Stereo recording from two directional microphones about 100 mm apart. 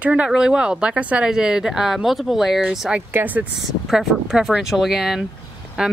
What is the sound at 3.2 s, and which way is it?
Speech, 25° right (ahead or behind).